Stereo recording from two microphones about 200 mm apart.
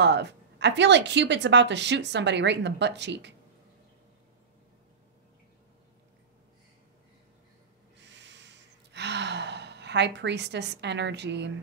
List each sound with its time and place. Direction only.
0.0 s a woman's voice: 60° right (ahead or behind)
8.1 s gasp: 65° right (ahead or behind)